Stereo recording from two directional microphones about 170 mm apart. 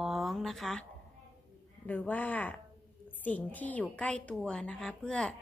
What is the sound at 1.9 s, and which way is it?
A woman's voice, 10° left (ahead or behind).